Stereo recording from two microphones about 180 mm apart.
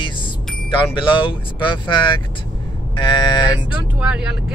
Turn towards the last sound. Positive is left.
turn(degrees=-5)  # may be behind; listen again after turning